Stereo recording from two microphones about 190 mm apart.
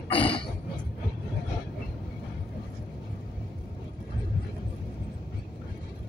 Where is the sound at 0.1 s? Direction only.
25° left (ahead or behind).